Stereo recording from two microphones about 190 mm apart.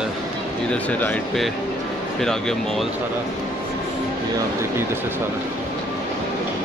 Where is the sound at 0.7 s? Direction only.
5° left (ahead or behind).